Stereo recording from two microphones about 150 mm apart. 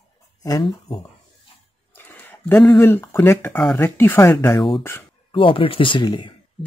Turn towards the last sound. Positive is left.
turn(degrees=30)  # may be behind; listen again after turning